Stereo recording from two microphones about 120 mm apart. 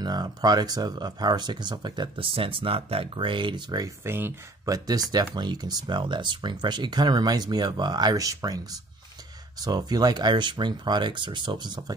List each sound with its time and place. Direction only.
0.0 s speech: 35° right (ahead or behind)
4.0 s speech: 20° right (ahead or behind)
4.7 s speech: 35° right (ahead or behind)